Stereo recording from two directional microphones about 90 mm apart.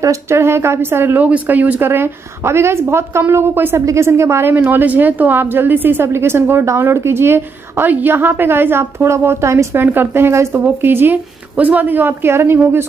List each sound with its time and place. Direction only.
0.0 s speech: 30° right (ahead or behind)